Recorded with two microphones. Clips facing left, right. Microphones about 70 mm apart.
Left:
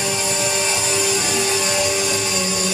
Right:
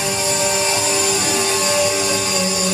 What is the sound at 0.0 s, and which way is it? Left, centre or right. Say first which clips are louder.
Music: right 2 dB; centre.